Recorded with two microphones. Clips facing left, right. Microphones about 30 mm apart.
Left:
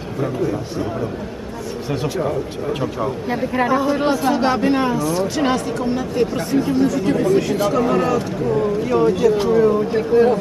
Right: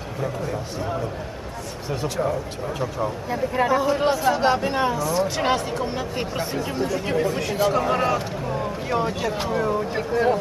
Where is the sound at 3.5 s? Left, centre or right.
Centre.